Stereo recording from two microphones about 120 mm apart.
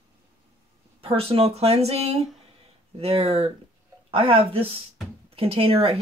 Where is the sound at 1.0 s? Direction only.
50° right (ahead or behind).